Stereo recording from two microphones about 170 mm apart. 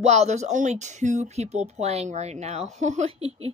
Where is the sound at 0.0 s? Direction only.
40° right (ahead or behind).